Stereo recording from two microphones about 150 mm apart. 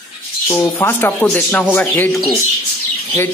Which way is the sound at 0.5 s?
15° left (ahead or behind).